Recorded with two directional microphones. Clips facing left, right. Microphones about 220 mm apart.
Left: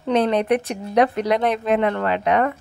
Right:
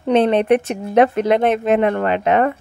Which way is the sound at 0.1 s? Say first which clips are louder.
Right 4 dB; 25° right (ahead or behind).